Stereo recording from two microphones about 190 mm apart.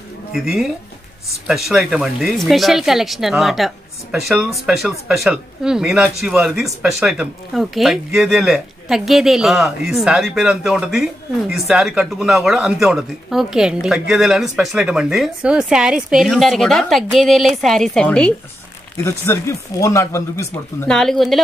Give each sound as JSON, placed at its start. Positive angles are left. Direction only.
{"t": 0.3, "sound": "speech", "side_deg": 0}
{"t": 20.9, "sound": "speech", "side_deg": 0}